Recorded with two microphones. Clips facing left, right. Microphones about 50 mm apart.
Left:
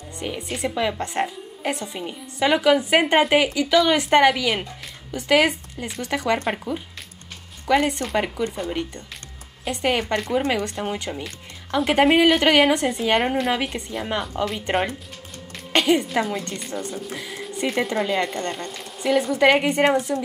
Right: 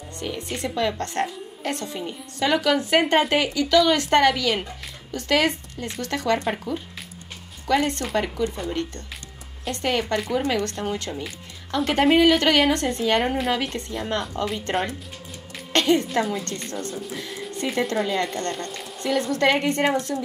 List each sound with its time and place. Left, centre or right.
0.2 s a woman's voice: centre
17.1 s a sound: centre
17.7 s speech: centre